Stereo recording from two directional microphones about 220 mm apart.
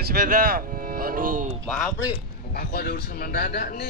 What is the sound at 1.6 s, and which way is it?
Speech, centre (ahead or behind).